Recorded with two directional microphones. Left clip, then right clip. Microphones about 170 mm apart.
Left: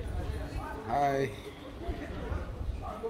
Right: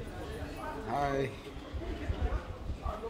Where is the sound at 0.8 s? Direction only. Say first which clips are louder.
Left 4 dB; 40° left (ahead or behind).